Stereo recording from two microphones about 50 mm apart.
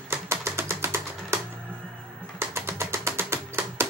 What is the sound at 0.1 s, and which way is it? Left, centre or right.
Music, right.